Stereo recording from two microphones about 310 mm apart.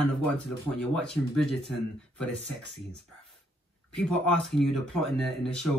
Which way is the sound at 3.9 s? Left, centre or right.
Centre.